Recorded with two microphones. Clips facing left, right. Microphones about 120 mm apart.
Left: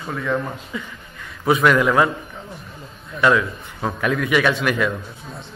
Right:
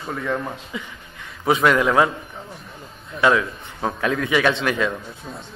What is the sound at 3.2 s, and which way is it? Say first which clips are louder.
A man's voice: left 1 dB; 20° right (ahead or behind).